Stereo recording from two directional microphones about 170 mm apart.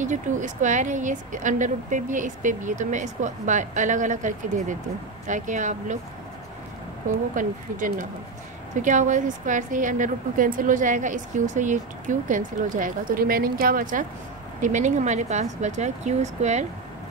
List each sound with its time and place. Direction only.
0.0 s a woman's voice: 45° right (ahead or behind)
7.3 s a woman's voice: 50° right (ahead or behind)